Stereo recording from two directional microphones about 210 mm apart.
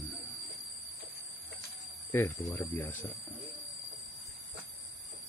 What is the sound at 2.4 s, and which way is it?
Speech, 15° left (ahead or behind).